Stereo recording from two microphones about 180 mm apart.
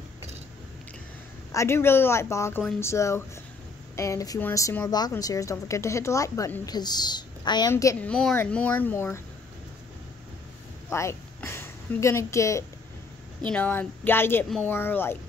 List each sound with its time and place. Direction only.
1.5 s a woman's voice: 15° left (ahead or behind)
8.1 s a woman's voice: 5° left (ahead or behind)
10.9 s a woman's voice: 15° left (ahead or behind)